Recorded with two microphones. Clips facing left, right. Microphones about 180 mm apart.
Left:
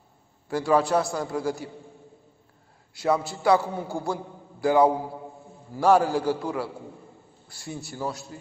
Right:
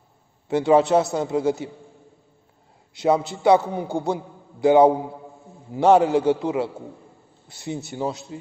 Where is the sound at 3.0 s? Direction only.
20° right (ahead or behind).